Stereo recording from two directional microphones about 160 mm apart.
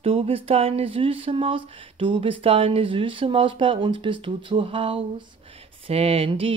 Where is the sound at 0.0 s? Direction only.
35° right (ahead or behind).